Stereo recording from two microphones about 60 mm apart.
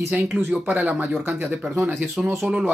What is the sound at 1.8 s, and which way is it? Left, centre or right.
Speech, right.